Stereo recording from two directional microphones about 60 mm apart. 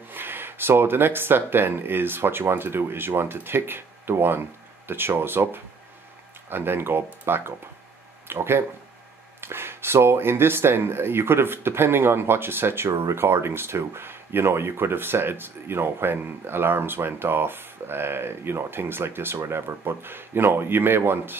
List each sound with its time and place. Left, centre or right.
0.1 s speech: right